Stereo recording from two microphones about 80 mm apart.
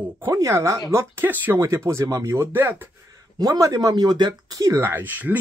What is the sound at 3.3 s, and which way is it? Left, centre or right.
Speech, right.